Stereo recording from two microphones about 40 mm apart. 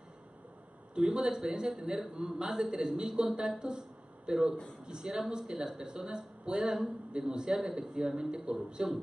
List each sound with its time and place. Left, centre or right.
0.9 s a man's voice: right